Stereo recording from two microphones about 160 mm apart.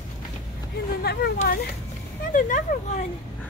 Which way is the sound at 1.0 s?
80° left.